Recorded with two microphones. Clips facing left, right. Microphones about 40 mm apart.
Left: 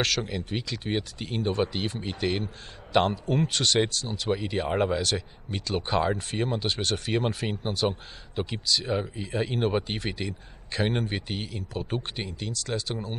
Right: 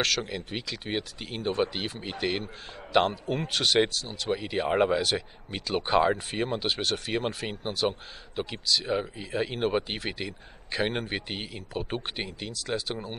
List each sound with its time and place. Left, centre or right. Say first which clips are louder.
0.2 s speech: left 2 dB; centre